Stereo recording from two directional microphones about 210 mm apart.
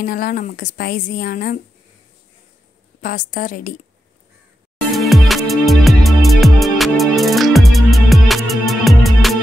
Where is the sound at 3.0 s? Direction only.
40° left (ahead or behind).